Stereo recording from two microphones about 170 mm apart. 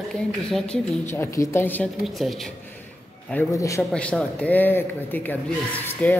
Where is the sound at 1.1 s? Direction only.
15° left (ahead or behind).